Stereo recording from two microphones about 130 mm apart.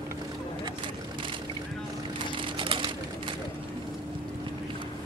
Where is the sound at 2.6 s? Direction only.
40° right (ahead or behind).